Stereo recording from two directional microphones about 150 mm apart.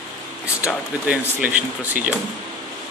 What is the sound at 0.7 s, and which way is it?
Speech, 10° right (ahead or behind).